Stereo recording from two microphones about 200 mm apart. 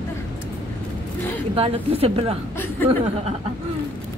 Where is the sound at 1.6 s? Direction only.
30° right (ahead or behind).